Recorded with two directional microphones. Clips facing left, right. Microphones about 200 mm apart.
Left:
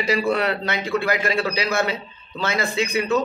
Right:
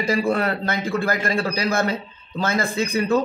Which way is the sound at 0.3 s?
45° right (ahead or behind).